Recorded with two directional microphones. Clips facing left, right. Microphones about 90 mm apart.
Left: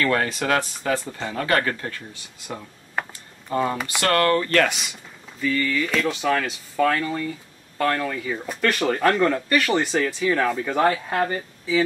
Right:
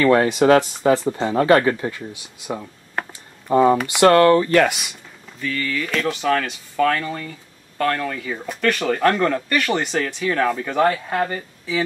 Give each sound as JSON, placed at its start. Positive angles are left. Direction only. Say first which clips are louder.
{"t": 0.0, "sound": "speech", "louder": "right 8 dB", "side_deg": -20}
{"t": 5.4, "sound": "speech", "louder": "left 2 dB", "side_deg": 0}